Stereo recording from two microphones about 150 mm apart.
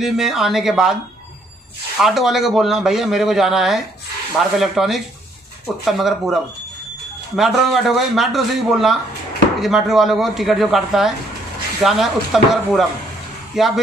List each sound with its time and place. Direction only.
0.0 s a man's voice: 5° right (ahead or behind)
2.0 s a man's voice: centre (ahead or behind)